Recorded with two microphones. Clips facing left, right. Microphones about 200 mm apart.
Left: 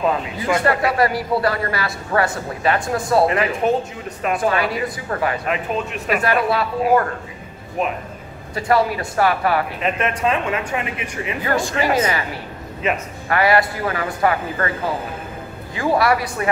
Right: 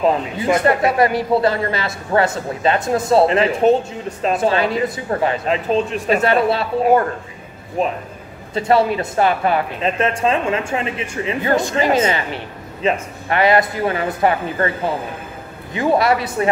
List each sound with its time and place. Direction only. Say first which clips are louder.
0.0 s speech: right 3 dB; 20° right (ahead or behind)
15.7 s speech: right 2 dB; 20° right (ahead or behind)